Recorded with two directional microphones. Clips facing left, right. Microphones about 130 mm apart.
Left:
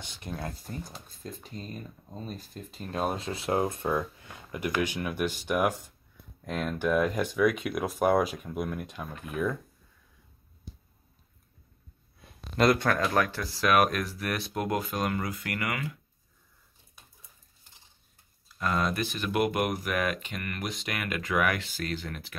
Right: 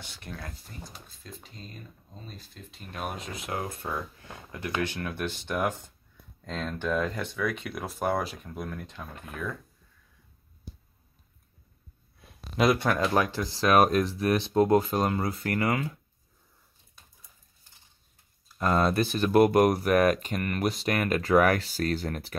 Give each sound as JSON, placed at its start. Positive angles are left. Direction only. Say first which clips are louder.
{"t": 0.2, "sound": "speech", "louder": "left 5 dB", "side_deg": 20}
{"t": 0.7, "sound": "speech", "louder": "left 6 dB", "side_deg": 45}
{"t": 12.3, "sound": "a sound", "louder": "even", "side_deg": 0}
{"t": 12.8, "sound": "speech", "louder": "right 1 dB", "side_deg": -20}
{"t": 18.6, "sound": "speech", "louder": "right 4 dB", "side_deg": -35}